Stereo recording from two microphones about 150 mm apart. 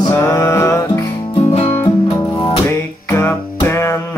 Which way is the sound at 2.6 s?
15° left (ahead or behind).